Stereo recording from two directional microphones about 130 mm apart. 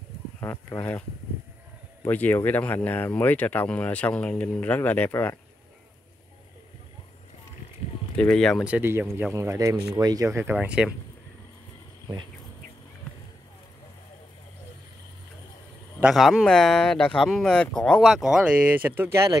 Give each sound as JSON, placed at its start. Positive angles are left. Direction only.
{"t": 0.4, "sound": "speech", "side_deg": 20}
{"t": 2.0, "sound": "speech", "side_deg": 15}
{"t": 8.2, "sound": "speech", "side_deg": 5}
{"t": 8.6, "sound": "speech", "side_deg": -15}
{"t": 16.0, "sound": "speech", "side_deg": -5}